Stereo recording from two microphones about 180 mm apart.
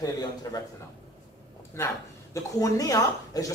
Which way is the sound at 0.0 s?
20° left (ahead or behind).